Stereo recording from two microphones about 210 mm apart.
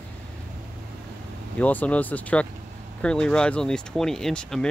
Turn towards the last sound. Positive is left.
turn(degrees=5)  # may be behind; listen again after turning